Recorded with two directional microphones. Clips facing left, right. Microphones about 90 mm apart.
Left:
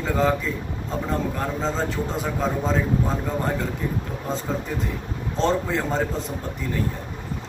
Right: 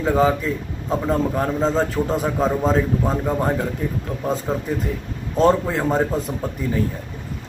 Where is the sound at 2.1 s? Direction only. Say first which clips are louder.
Right 7 dB; 5° right (ahead or behind).